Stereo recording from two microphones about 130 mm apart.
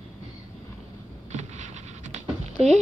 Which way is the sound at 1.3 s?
65° right (ahead or behind).